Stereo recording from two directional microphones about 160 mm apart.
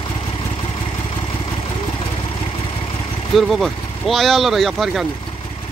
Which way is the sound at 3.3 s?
Centre (ahead or behind).